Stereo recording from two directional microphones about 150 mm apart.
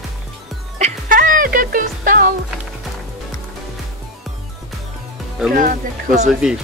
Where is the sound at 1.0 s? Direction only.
65° right (ahead or behind).